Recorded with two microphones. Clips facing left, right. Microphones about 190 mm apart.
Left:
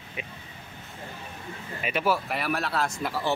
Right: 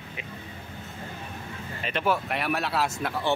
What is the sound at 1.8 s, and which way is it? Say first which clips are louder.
Speech: even; 5° left (ahead or behind).